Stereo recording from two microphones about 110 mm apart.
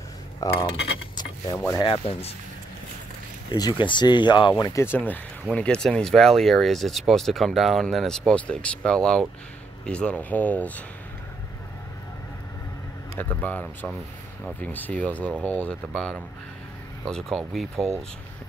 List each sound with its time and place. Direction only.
0.7 s vehicle: 40° left (ahead or behind)
1.9 s speech: 60° left (ahead or behind)
3.5 s speech: 45° left (ahead or behind); by 10.8 s 15° left (ahead or behind)
13.2 s speech: 15° left (ahead or behind); by 17.8 s centre (ahead or behind)